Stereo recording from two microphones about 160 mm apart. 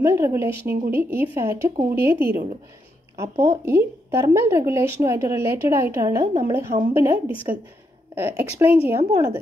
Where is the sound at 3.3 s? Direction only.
40° right (ahead or behind).